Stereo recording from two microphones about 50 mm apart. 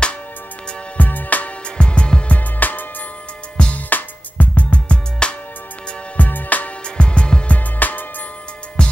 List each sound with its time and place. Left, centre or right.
0.9 s music: left
1.8 s music: centre
2.3 s music: left
3.5 s music: left
3.9 s music: left
6.1 s music: left
7.0 s music: centre
7.5 s music: left
8.8 s music: centre